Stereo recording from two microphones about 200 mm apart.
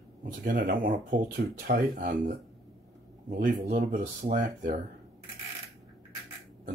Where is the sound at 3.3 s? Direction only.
40° right (ahead or behind).